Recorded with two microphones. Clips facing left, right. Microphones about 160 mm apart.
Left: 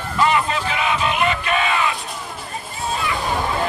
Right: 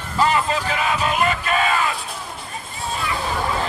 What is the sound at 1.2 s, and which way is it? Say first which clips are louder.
Music: even; 40° right (ahead or behind).